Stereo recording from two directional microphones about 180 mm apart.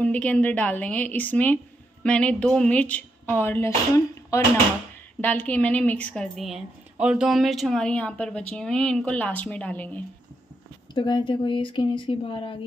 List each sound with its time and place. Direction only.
0.0 s a woman's voice: 10° left (ahead or behind)
11.0 s speech: 25° left (ahead or behind)